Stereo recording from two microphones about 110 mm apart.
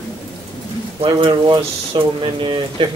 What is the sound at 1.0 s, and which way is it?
Speech, 50° right (ahead or behind).